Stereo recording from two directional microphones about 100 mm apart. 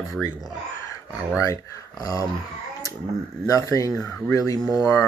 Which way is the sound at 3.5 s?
35° left (ahead or behind).